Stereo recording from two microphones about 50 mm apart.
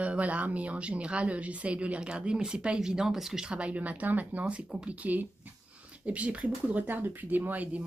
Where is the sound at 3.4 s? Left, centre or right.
Right.